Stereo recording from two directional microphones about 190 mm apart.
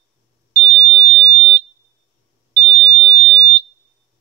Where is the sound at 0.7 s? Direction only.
25° right (ahead or behind).